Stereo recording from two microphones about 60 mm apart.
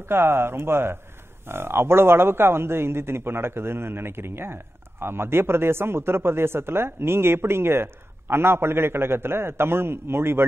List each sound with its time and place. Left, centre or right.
0.1 s speech: right